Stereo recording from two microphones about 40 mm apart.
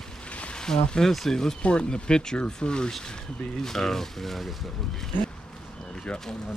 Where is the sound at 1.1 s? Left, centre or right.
Centre.